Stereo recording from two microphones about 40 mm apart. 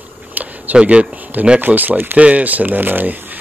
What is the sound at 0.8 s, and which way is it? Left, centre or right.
Speech, right.